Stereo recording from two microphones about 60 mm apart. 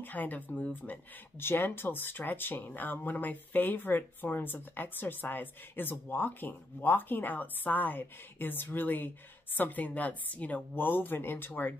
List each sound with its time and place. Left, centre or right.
0.0 s speech: left
1.4 s speech: left